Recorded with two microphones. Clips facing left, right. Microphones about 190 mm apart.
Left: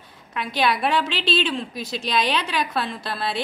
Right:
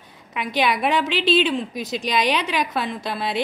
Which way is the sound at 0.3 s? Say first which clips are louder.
Right 1 dB; 15° right (ahead or behind).